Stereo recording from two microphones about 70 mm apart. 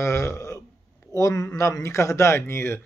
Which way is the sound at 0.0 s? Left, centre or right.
Left.